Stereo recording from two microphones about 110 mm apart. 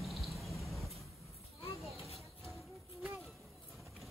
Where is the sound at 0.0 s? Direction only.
Centre (ahead or behind).